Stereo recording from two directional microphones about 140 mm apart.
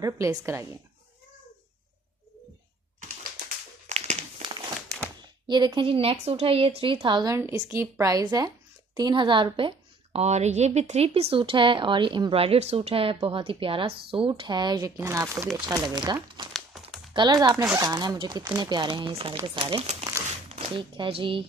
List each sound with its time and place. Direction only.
0.0 s a woman's voice: 25° right (ahead or behind)
3.9 s crumpling: 50° right (ahead or behind)
5.2 s a woman's voice: 30° right (ahead or behind)
7.3 s a woman's voice: 15° right (ahead or behind)
15.0 s a woman's voice: 20° right (ahead or behind)
17.6 s speech: 15° right (ahead or behind)
17.8 s a woman's voice: 30° right (ahead or behind)